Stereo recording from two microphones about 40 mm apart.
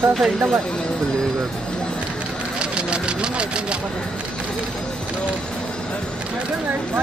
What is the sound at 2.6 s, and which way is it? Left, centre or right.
Vehicle, right.